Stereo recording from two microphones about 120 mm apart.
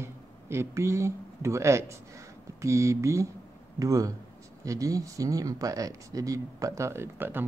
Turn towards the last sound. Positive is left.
turn(degrees=-15)  # may be behind; listen again after turning